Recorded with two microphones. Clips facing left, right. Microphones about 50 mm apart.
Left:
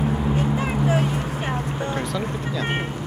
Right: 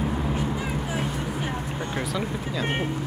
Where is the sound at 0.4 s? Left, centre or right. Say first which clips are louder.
Left 5 dB; left.